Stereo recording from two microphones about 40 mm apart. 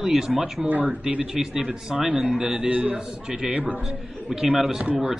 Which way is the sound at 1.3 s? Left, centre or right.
Centre.